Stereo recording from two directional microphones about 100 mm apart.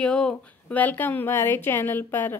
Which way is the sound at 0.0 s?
5° left (ahead or behind).